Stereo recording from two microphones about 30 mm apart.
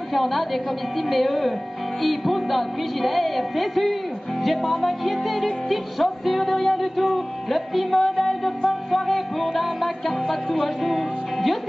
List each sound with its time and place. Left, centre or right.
0.1 s music: centre